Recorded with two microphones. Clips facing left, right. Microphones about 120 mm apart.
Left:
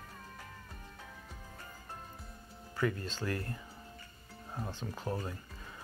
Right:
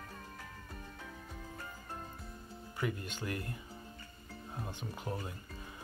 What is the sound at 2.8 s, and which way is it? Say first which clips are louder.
Speech: left 4 dB; 15° right (ahead or behind).